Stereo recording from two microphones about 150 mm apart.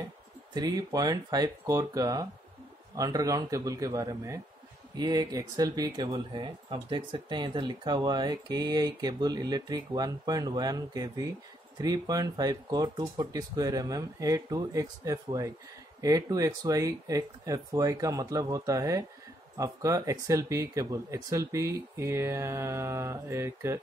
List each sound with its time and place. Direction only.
0.6 s speech: 25° right (ahead or behind)